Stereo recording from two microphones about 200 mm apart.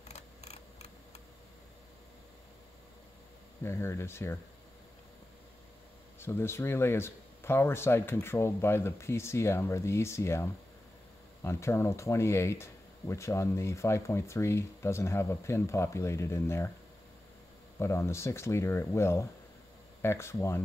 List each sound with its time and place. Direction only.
0.1 s camera: 35° left (ahead or behind)
3.6 s speech: 10° left (ahead or behind)
6.1 s speech: 10° left (ahead or behind)
17.7 s speech: 10° left (ahead or behind)